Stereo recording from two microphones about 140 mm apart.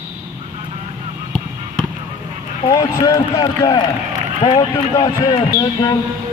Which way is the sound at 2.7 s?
25° left (ahead or behind).